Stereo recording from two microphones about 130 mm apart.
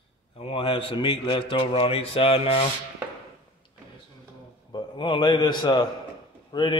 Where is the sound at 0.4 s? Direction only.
45° left (ahead or behind).